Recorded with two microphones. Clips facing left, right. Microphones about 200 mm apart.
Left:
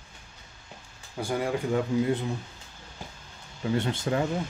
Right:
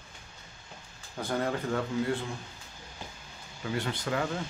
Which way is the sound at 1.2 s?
10° left (ahead or behind).